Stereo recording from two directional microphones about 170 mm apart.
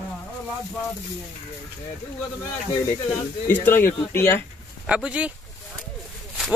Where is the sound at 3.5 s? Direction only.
10° left (ahead or behind).